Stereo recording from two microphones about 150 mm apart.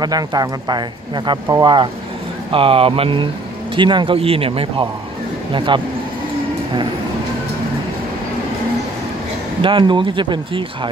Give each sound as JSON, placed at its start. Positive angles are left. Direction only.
{"t": 0.0, "sound": "speech", "side_deg": -25}
{"t": 9.6, "sound": "speech", "side_deg": -35}